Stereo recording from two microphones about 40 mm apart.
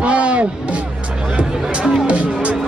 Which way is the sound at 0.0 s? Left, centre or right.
Right.